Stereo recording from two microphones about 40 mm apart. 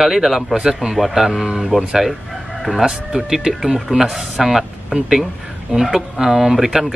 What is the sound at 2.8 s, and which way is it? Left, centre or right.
A man's voice, centre.